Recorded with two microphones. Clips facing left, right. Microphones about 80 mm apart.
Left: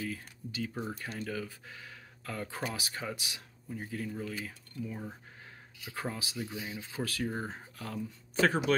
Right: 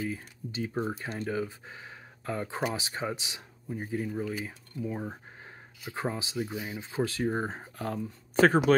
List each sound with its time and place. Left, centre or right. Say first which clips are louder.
0.0 s speech: right 4 dB; right
6.3 s speech: right 5 dB; centre
7.0 s speech: right 6 dB; right